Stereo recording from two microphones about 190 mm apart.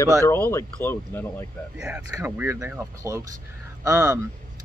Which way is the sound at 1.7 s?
10° right (ahead or behind).